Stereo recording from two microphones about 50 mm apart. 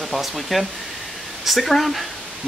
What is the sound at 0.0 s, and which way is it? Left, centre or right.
Speech, centre.